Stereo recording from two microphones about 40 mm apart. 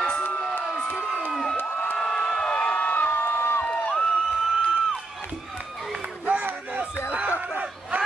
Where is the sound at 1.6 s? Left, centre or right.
Left.